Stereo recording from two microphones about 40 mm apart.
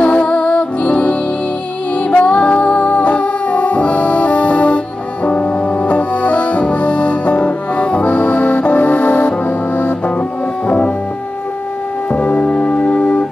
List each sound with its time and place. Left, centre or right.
0.0 s music: left
12.1 s music: left